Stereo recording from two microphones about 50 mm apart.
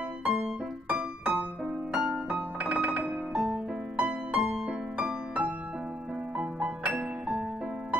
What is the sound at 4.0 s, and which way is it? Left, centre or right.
Music, centre.